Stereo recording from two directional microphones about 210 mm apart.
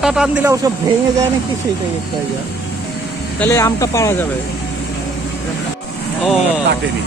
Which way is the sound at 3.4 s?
15° left (ahead or behind).